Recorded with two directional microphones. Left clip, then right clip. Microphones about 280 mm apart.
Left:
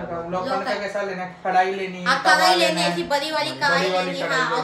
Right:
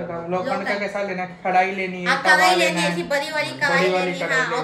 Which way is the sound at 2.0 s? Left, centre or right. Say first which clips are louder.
Right 1 dB; centre.